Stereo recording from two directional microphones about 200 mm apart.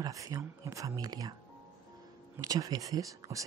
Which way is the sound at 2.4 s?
15° right (ahead or behind).